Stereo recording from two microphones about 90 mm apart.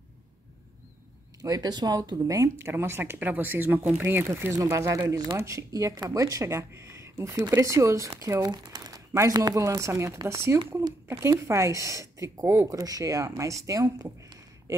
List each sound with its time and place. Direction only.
1.4 s speech: 45° right (ahead or behind)